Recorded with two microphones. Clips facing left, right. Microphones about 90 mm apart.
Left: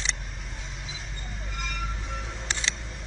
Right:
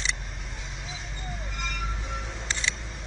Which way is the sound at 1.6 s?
Centre (ahead or behind).